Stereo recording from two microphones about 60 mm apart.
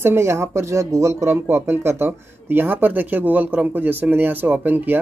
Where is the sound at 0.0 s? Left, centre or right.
Right.